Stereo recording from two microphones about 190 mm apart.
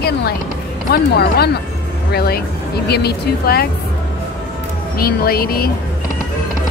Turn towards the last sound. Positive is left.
turn(degrees=55)  # may be behind; listen again after turning